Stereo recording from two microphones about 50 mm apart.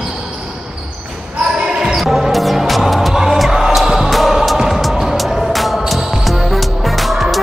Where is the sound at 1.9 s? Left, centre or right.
Centre.